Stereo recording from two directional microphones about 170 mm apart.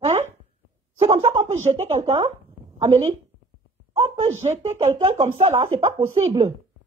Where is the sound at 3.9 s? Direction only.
35° right (ahead or behind).